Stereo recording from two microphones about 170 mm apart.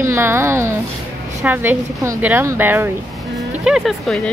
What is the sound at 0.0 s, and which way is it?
A woman's voice, 15° right (ahead or behind).